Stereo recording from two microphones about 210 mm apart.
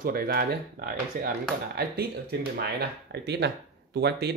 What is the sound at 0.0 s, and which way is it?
Speech, 45° right (ahead or behind).